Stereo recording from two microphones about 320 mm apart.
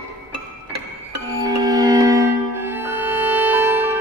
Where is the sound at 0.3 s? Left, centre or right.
Right.